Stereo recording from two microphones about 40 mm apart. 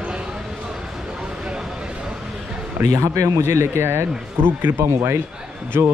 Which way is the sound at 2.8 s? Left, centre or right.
Right.